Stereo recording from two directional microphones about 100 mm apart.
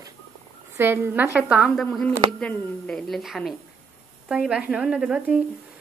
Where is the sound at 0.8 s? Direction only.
25° right (ahead or behind).